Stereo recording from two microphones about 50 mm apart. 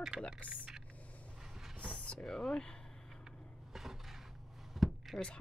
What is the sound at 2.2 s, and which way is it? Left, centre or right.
Speech, centre.